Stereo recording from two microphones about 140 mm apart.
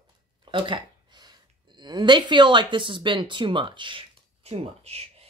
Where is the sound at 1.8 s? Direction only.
30° right (ahead or behind).